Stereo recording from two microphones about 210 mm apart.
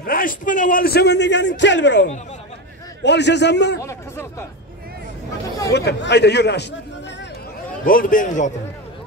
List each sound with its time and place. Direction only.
0.0 s a man's voice: 40° left (ahead or behind)
3.8 s speech: 10° left (ahead or behind)
5.7 s a man's voice: 55° left (ahead or behind)
7.8 s a man's voice: 40° left (ahead or behind)